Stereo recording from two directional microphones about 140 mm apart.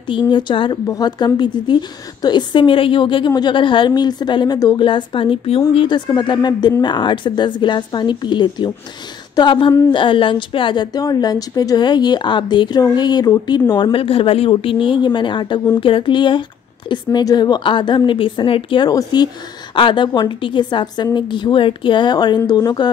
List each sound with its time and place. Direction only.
0.1 s a woman's voice: 35° left (ahead or behind)
13.9 s a woman's voice: 40° left (ahead or behind)